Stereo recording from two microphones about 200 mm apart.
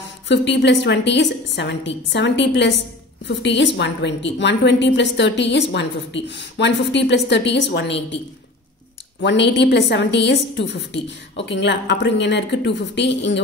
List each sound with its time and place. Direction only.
0.3 s a woman's voice: 60° left (ahead or behind)
9.2 s a woman's voice: 60° left (ahead or behind)